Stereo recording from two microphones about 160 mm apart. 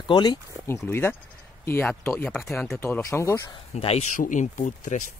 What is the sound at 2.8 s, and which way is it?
Speech, 15° left (ahead or behind).